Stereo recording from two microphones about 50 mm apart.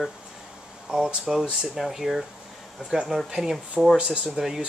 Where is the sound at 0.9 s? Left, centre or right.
Right.